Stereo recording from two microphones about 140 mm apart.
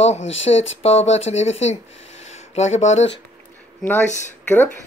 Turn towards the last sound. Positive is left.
turn(degrees=15)  # may be behind; listen again after turning